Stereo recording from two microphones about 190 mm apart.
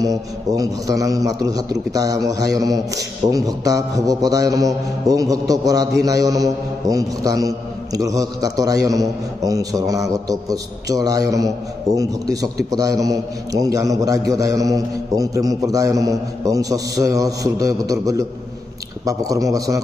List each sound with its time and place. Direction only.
0.0 s a man's voice: 20° right (ahead or behind)